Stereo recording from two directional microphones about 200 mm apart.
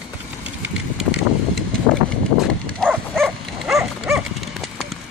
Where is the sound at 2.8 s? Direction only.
Centre (ahead or behind).